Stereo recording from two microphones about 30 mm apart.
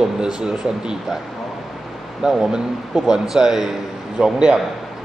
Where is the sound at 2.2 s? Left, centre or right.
Right.